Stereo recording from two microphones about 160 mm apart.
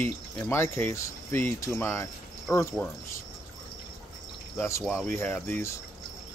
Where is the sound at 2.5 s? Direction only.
5° left (ahead or behind).